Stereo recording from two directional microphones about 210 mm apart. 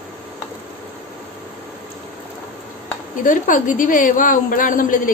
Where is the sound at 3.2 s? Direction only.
40° left (ahead or behind).